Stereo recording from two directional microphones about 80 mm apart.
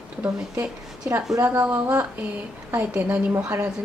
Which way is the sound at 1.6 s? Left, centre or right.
Right.